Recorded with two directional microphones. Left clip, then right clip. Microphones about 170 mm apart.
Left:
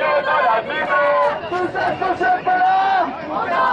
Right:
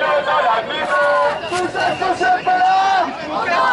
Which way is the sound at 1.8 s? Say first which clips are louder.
Right 2 dB; 10° left (ahead or behind).